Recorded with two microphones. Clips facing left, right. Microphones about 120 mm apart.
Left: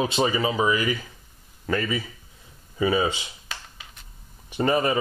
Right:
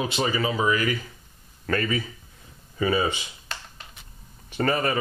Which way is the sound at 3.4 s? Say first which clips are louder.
Right 1 dB; 5° left (ahead or behind).